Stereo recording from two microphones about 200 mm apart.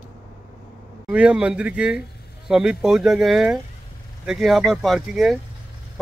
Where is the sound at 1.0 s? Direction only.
5° right (ahead or behind).